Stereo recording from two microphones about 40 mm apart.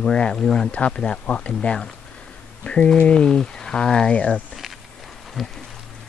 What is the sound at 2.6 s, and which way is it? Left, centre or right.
Speech, left.